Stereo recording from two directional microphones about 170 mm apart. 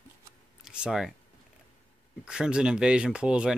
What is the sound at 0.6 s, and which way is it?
Speech, 5° right (ahead or behind).